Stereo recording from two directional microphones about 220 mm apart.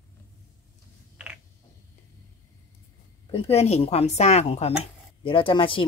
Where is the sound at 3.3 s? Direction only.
30° left (ahead or behind).